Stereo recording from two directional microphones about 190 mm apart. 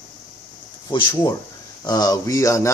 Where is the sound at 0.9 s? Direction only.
25° left (ahead or behind).